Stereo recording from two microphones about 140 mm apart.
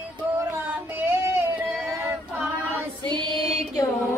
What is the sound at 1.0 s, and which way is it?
Female singing, 15° right (ahead or behind).